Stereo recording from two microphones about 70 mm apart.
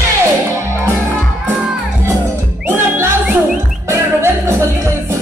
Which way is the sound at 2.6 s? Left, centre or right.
Right.